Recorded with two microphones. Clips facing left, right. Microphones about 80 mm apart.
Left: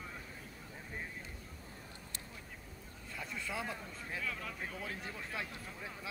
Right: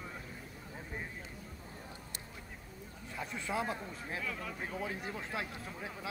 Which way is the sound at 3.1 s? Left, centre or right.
Centre.